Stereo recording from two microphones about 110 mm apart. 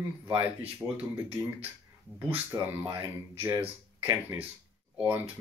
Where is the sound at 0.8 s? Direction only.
15° right (ahead or behind).